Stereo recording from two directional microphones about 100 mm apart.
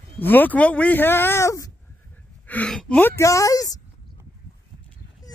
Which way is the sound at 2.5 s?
10° left (ahead or behind).